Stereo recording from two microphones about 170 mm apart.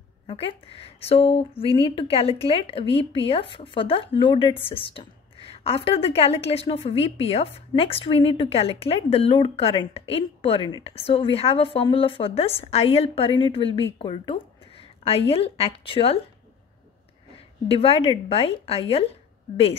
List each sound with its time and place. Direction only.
0.3 s speech: 35° left (ahead or behind)
17.6 s speech: 35° left (ahead or behind)